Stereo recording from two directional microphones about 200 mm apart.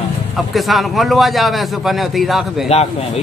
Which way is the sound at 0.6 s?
Centre (ahead or behind).